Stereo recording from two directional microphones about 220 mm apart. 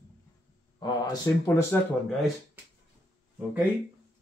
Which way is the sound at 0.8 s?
15° left (ahead or behind).